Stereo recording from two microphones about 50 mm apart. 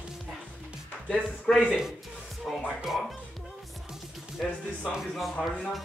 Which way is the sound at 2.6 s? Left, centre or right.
Centre.